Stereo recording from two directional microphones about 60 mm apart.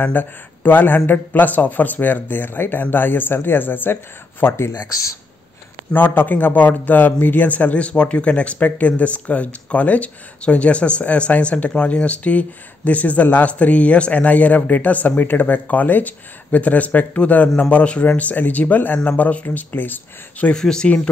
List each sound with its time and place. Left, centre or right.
0.0 s speech: left
5.9 s speech: left
20.5 s speech: centre